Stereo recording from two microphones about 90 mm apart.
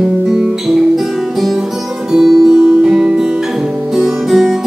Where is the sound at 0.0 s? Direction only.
5° right (ahead or behind).